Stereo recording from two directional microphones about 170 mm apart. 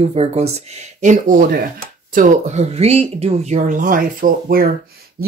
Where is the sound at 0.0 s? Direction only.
40° right (ahead or behind).